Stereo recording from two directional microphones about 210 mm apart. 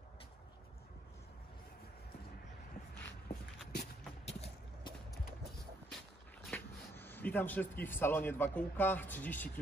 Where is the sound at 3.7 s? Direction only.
50° left (ahead or behind).